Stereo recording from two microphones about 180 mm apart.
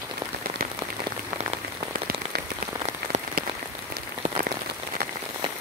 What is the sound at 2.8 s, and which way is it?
Rain on surface, 40° right (ahead or behind).